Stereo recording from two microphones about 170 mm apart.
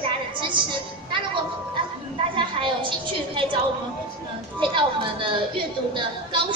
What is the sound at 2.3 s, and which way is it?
A woman's voice, 30° right (ahead or behind).